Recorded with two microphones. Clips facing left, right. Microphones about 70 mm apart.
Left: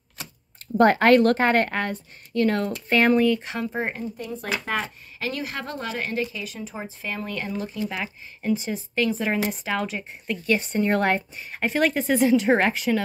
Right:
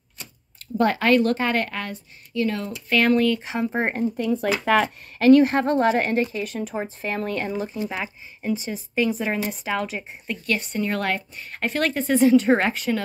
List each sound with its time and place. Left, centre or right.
0.6 s a woman's voice: left
2.9 s a woman's voice: left
3.7 s speech: right
4.2 s speech: right
5.2 s speech: right
7.4 s speech: right
8.0 s speech: centre
10.7 s a woman's voice: left
11.3 s a woman's voice: centre